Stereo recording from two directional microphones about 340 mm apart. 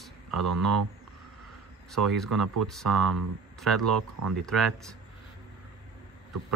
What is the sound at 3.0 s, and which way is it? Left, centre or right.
Speech, right.